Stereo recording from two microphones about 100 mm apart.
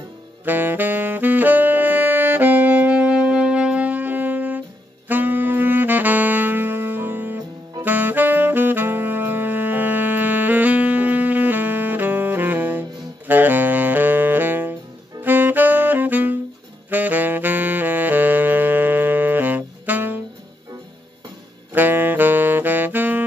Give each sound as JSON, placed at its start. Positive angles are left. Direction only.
{"t": 0.5, "sound": "saxophone", "side_deg": -20}
{"t": 13.3, "sound": "music", "side_deg": -20}
{"t": 15.2, "sound": "saxophone", "side_deg": -20}
{"t": 21.7, "sound": "saxophone", "side_deg": -20}